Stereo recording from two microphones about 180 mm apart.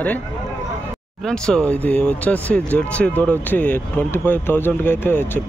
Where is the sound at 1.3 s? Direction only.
5° left (ahead or behind).